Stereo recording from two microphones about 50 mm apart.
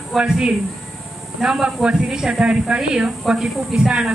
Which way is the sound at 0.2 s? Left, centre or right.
Centre.